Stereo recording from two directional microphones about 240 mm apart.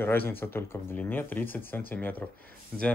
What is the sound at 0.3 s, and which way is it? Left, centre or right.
Speech, centre.